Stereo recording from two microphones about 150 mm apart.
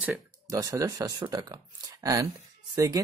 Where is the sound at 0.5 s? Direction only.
20° right (ahead or behind).